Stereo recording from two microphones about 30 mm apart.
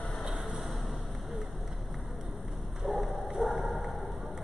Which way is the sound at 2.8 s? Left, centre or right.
Centre.